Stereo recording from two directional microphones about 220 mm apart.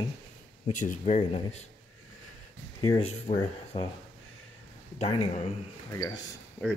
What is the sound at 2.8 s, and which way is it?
Speech, 20° left (ahead or behind).